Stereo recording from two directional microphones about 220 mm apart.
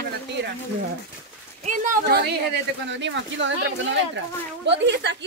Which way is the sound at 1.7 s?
40° right (ahead or behind).